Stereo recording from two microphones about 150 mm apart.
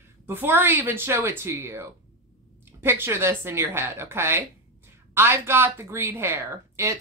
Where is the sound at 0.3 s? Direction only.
15° right (ahead or behind).